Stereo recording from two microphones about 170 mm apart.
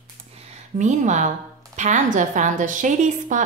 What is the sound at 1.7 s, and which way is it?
A woman's voice, 45° right (ahead or behind).